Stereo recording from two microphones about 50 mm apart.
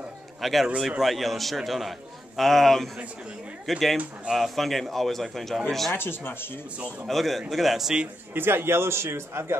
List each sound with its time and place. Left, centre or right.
0.4 s a man's voice: centre
5.9 s speech: left
7.1 s a man's voice: centre
8.4 s a man's voice: right